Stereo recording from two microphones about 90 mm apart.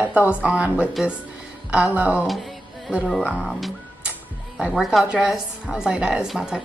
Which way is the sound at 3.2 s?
15° left (ahead or behind).